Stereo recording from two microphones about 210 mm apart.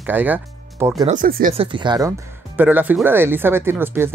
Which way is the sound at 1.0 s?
40° right (ahead or behind).